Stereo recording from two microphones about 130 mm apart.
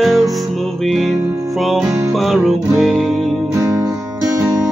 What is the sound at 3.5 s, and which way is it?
Music, 25° right (ahead or behind).